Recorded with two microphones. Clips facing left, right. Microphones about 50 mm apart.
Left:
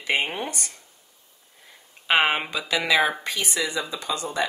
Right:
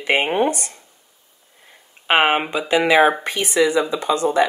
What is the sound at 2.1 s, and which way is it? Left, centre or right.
Speech, right.